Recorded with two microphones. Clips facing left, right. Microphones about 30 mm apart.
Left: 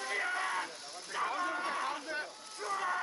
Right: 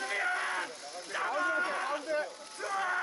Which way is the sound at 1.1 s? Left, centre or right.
Right.